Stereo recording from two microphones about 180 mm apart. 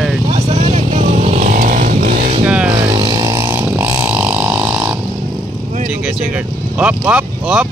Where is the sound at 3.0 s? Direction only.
25° right (ahead or behind).